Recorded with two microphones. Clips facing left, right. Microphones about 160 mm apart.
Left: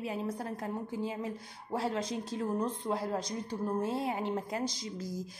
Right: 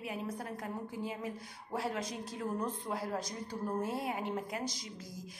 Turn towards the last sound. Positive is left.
turn(degrees=30)  # may be behind; listen again after turning